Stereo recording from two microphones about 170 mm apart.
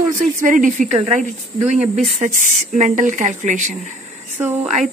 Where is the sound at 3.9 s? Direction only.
45° right (ahead or behind).